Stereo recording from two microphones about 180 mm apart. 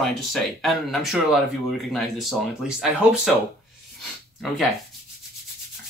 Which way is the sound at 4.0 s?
Centre (ahead or behind).